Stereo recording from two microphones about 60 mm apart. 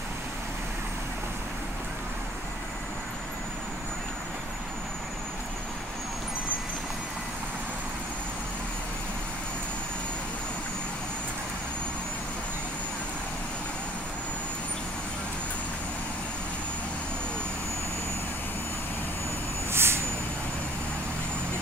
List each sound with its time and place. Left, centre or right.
19.7 s vehicle: right